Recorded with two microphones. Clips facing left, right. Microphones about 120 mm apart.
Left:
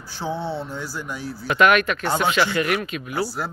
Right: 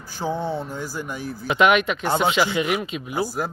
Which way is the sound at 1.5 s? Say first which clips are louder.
Even; 20° right (ahead or behind).